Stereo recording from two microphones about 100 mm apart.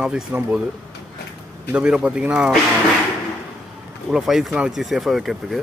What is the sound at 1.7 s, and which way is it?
Speech, 10° right (ahead or behind).